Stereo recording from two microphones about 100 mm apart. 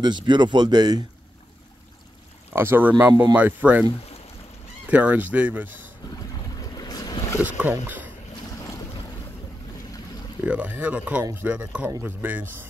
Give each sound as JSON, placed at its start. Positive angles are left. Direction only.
{"t": 0.0, "sound": "speech", "side_deg": -50}
{"t": 2.5, "sound": "speech", "side_deg": -20}
{"t": 4.8, "sound": "speech", "side_deg": -15}
{"t": 6.6, "sound": "boat", "side_deg": 40}
{"t": 7.4, "sound": "speech", "side_deg": -15}
{"t": 7.8, "sound": "boat", "side_deg": -20}
{"t": 10.4, "sound": "speech", "side_deg": -15}